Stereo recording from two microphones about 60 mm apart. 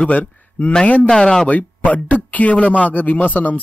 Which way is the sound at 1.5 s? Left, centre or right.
Left.